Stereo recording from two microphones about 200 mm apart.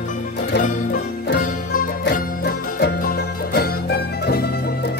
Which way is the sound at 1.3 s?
40° left (ahead or behind).